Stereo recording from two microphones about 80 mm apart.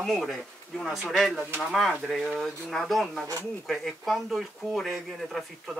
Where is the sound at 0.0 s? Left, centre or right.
Centre.